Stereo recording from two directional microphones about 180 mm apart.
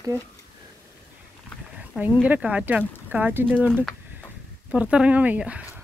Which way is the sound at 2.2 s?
10° right (ahead or behind).